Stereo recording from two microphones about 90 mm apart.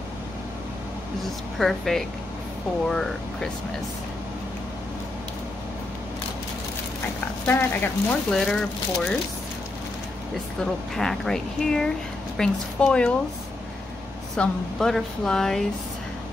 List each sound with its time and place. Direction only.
1.6 s a woman's voice: 5° left (ahead or behind)
7.4 s speech: 20° left (ahead or behind)
8.3 s a woman's voice: 5° left (ahead or behind)
10.6 s a woman's voice: 5° left (ahead or behind)
14.3 s speech: 5° left (ahead or behind)